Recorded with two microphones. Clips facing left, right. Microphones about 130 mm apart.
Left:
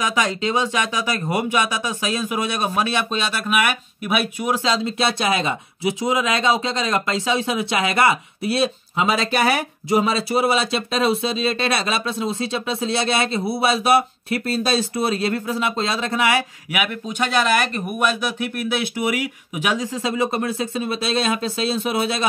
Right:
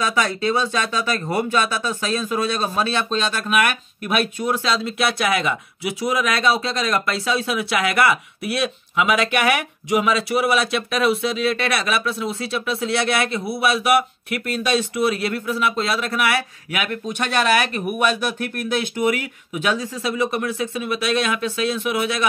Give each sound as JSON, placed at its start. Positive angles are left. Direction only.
{"t": 0.0, "sound": "speech", "side_deg": 15}
{"t": 17.6, "sound": "speech", "side_deg": -5}